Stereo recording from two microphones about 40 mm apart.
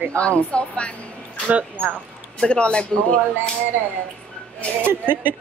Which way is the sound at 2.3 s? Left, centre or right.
Left.